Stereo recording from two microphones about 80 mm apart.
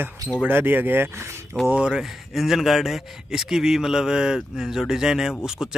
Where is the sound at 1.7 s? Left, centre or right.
Centre.